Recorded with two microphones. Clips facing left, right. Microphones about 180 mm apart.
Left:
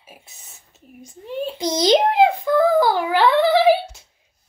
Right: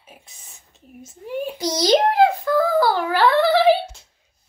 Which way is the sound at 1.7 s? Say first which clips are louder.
Left 1 dB; 20° left (ahead or behind).